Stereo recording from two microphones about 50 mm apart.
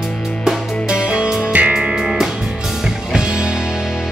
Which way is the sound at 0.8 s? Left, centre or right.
Centre.